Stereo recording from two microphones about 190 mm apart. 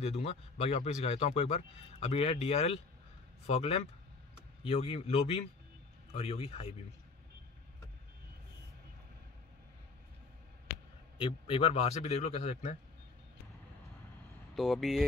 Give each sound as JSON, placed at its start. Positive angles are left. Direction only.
{"t": 0.0, "sound": "a man's voice", "side_deg": 35}
{"t": 11.1, "sound": "a man's voice", "side_deg": 25}
{"t": 14.5, "sound": "speech", "side_deg": 0}